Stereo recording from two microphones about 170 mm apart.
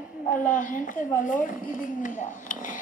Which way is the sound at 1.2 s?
50° left (ahead or behind).